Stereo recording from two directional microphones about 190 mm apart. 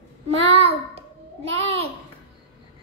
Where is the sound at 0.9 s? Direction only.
30° right (ahead or behind).